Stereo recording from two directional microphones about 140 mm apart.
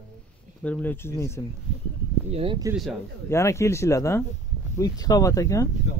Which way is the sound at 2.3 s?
40° right (ahead or behind).